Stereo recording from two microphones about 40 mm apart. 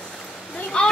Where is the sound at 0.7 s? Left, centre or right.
Left.